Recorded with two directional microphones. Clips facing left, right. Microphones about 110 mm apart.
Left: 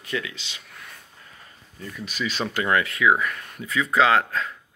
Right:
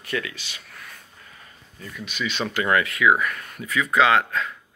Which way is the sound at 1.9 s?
35° left (ahead or behind).